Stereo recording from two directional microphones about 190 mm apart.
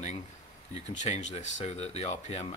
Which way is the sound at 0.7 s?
35° left (ahead or behind).